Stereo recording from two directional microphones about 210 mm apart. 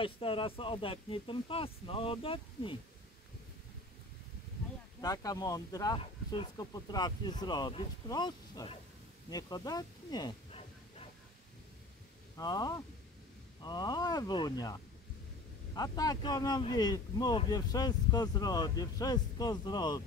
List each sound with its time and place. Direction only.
0.0 s speech: 25° left (ahead or behind)
5.0 s speech: 15° left (ahead or behind)
12.4 s speech: 20° left (ahead or behind)